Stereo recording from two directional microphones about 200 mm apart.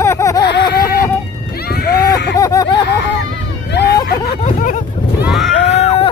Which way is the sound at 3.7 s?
55° left (ahead or behind).